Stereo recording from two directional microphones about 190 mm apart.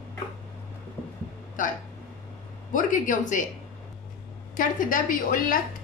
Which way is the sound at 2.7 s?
45° left (ahead or behind).